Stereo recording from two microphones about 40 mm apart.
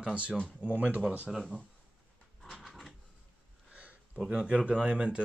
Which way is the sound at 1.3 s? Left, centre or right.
Centre.